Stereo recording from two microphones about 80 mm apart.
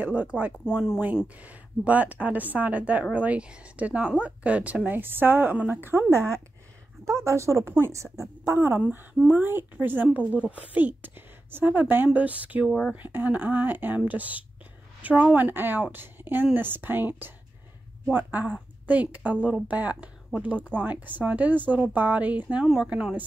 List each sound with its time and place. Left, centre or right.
0.0 s a woman's voice: centre